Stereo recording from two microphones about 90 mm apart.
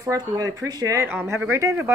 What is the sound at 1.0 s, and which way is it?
Speech, 25° right (ahead or behind).